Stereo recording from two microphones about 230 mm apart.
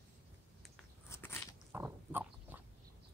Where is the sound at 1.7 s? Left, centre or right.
Centre.